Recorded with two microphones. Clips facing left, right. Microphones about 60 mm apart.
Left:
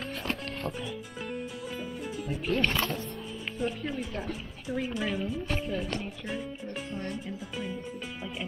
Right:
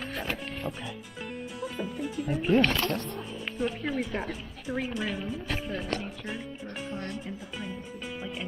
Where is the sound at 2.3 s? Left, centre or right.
Centre.